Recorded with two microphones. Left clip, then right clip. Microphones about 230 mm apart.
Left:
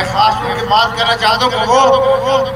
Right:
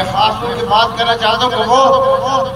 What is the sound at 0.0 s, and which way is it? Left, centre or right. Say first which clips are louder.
A man's voice: left 1 dB; left.